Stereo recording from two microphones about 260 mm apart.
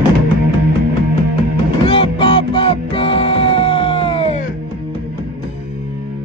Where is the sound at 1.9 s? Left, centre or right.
Centre.